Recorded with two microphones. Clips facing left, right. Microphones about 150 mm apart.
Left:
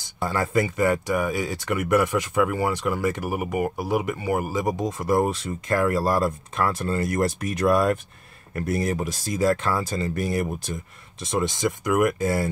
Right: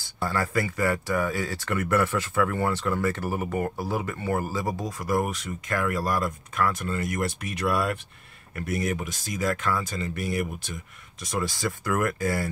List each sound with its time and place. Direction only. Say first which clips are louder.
0.0 s speech: left 2 dB; 20° left (ahead or behind)